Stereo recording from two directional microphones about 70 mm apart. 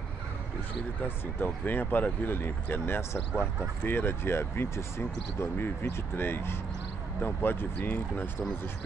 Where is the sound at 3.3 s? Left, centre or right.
Centre.